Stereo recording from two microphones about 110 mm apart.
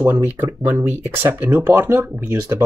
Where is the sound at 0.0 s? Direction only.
20° right (ahead or behind).